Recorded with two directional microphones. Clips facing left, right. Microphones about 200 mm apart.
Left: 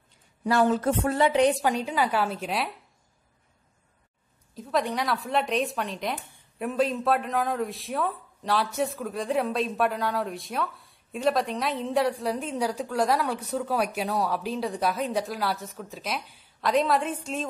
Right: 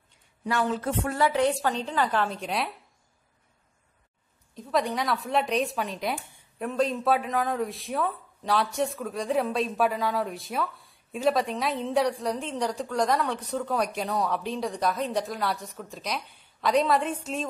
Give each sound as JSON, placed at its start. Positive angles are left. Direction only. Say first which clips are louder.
{"t": 0.5, "sound": "speech", "louder": "left 5 dB", "side_deg": 40}
{"t": 1.0, "sound": "a woman's voice", "louder": "left 2 dB", "side_deg": 20}
{"t": 4.6, "sound": "speech", "louder": "even", "side_deg": 0}